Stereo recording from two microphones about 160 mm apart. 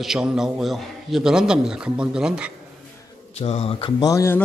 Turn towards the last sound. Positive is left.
turn(degrees=20)  # may be behind; listen again after turning